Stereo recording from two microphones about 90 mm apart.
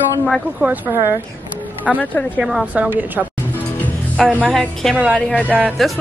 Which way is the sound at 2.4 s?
5° right (ahead or behind).